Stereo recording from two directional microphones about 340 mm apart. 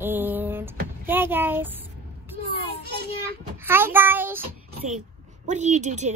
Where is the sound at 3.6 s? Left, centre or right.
Centre.